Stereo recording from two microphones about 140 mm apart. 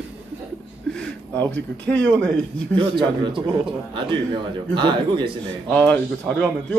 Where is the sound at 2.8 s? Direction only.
35° right (ahead or behind).